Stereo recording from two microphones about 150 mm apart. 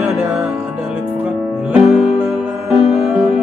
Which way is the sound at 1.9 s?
Centre (ahead or behind).